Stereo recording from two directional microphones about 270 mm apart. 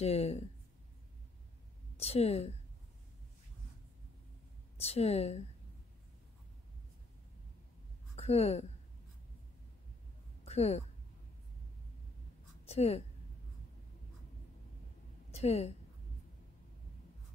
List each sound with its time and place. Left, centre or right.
0.0 s a woman's voice: left
2.0 s a woman's voice: left
4.7 s a woman's voice: left
8.2 s speech: left
10.4 s a woman's voice: left
12.6 s a woman's voice: left
15.3 s a woman's voice: left